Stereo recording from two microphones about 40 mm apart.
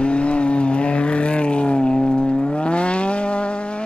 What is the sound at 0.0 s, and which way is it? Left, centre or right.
Vehicle, left.